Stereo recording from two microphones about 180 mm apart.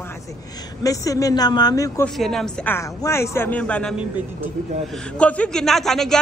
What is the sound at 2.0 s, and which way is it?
A man's voice, centre (ahead or behind).